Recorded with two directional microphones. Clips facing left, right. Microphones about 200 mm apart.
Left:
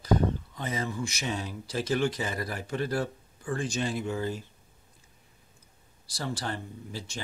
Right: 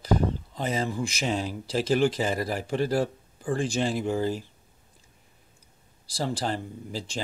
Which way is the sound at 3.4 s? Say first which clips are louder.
Right 4 dB; 35° right (ahead or behind).